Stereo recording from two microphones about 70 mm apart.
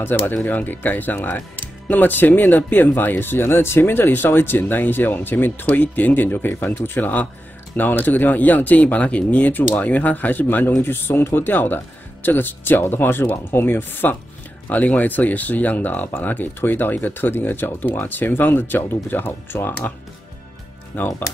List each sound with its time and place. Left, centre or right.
0.0 s speech: left
20.9 s speech: left